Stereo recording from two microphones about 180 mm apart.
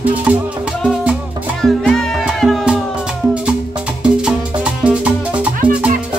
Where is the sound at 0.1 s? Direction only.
10° right (ahead or behind).